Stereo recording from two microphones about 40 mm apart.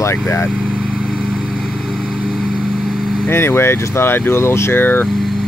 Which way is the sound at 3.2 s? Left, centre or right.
Left.